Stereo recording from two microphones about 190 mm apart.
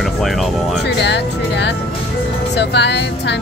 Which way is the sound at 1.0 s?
65° left (ahead or behind).